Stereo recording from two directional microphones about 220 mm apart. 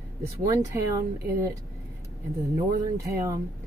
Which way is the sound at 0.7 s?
10° right (ahead or behind).